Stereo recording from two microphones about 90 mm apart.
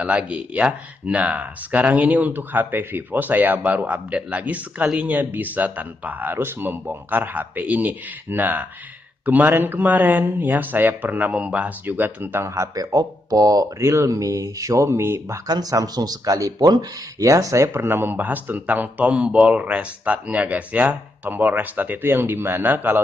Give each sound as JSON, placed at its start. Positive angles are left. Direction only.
{"t": 0.0, "sound": "speech", "side_deg": -15}
{"t": 15.4, "sound": "speech", "side_deg": -45}